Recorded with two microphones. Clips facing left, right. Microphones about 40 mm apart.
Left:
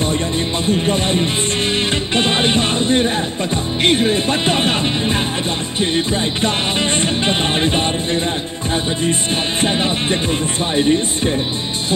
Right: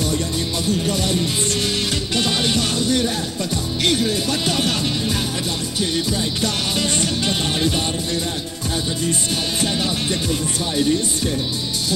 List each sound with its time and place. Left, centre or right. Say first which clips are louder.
0.7 s music: left 4 dB; left
9.6 s music: left 5 dB; left